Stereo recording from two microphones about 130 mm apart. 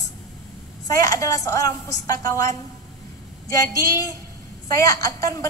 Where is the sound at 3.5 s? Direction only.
25° left (ahead or behind).